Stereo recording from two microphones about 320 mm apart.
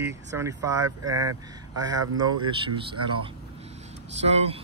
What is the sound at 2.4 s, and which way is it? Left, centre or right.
Speech, centre.